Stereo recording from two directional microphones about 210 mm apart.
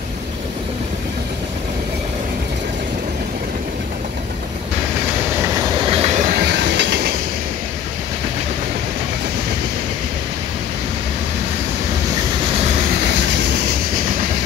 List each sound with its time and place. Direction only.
5.4 s train: 25° right (ahead or behind); by 7.2 s 50° right (ahead or behind)
13.0 s vehicle: 55° right (ahead or behind)